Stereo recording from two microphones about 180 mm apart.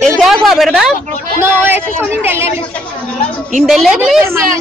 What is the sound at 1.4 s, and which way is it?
Speech, 10° right (ahead or behind).